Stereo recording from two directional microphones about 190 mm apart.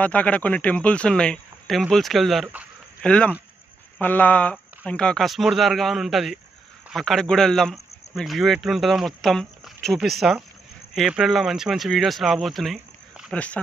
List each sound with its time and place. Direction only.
0.0 s speech: 5° left (ahead or behind)